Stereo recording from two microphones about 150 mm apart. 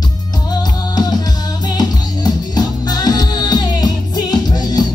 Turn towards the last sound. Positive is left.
turn(degrees=25)  # may be behind; listen again after turning